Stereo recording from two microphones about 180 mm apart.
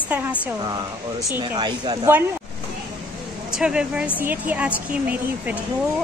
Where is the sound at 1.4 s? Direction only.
20° right (ahead or behind).